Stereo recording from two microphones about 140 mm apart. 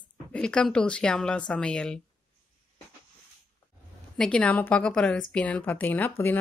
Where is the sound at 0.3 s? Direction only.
5° left (ahead or behind).